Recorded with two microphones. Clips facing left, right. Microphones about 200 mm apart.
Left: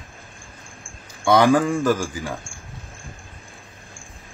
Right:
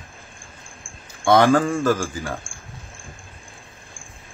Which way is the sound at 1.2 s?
15° left (ahead or behind).